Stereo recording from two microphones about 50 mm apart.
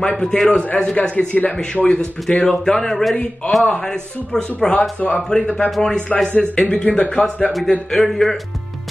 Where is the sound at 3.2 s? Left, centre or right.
Centre.